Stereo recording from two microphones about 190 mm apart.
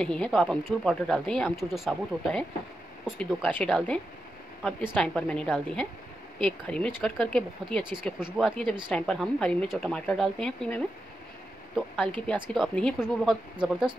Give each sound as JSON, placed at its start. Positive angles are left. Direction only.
{"t": 0.0, "sound": "speech", "side_deg": 5}
{"t": 12.4, "sound": "speech", "side_deg": 0}